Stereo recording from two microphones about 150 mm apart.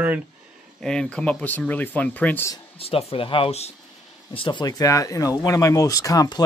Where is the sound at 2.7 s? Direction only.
40° left (ahead or behind).